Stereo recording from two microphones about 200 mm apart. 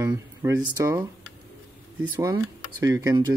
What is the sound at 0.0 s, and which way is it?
Speech, 15° right (ahead or behind).